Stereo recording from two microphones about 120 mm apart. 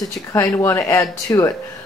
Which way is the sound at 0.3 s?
25° left (ahead or behind).